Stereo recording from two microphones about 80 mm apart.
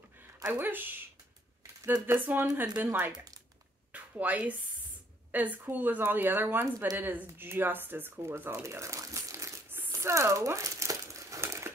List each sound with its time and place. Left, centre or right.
0.5 s speech: right
2.0 s speech: right
3.9 s a sound: centre
5.3 s speech: right
8.6 s crumpling: right
9.7 s a sound: right
9.9 s crumpling: right